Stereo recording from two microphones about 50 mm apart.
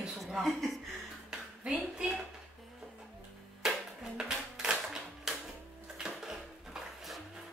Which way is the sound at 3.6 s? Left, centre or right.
Centre.